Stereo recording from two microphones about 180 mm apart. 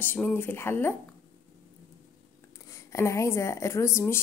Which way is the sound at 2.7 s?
15° left (ahead or behind).